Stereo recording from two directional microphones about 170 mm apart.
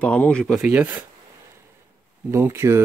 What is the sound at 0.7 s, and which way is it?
Speech, 10° right (ahead or behind).